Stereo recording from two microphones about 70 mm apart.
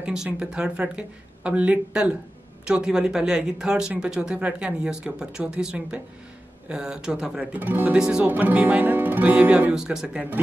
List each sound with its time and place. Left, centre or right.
0.0 s speech: centre
7.5 s speech: right